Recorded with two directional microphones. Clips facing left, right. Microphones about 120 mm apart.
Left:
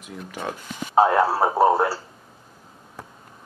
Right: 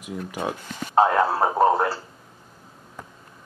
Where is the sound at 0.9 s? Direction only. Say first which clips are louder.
Left 1 dB; 10° left (ahead or behind).